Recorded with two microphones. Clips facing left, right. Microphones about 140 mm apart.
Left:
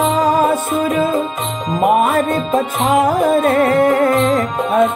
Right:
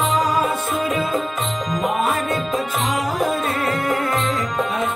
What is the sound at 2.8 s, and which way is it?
Music, 50° left (ahead or behind).